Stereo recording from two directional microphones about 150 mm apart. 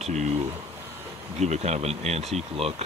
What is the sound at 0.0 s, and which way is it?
Speech, 55° right (ahead or behind).